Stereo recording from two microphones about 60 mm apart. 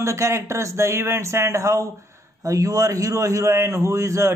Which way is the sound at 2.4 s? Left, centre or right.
Right.